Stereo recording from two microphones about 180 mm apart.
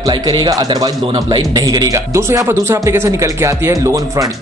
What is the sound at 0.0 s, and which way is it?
Speech, 25° right (ahead or behind).